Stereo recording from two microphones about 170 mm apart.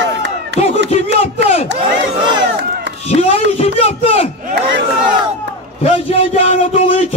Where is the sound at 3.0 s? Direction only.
40° left (ahead or behind).